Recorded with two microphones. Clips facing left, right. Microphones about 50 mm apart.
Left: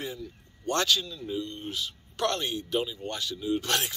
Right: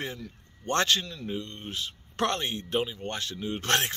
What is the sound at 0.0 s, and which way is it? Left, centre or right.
Speech, right.